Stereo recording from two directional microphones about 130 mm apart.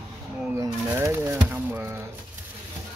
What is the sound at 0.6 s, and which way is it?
Pigeon, 20° right (ahead or behind).